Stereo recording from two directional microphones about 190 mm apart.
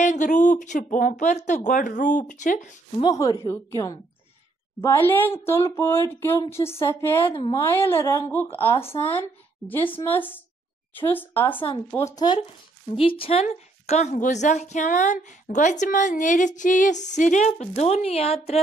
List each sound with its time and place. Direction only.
0.0 s a woman's voice: 40° left (ahead or behind)
3.0 s speech: 20° left (ahead or behind)
11.5 s speech: 30° left (ahead or behind)
11.9 s speech: 20° left (ahead or behind)
12.9 s a woman's voice: 30° left (ahead or behind)